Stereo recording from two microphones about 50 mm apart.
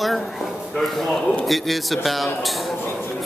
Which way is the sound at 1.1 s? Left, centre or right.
Left.